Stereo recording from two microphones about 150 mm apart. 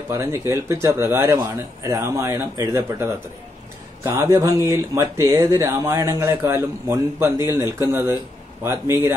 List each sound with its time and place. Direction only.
0.1 s speech: 20° right (ahead or behind)